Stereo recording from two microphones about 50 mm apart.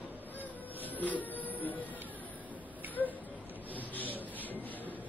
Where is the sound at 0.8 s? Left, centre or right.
Left.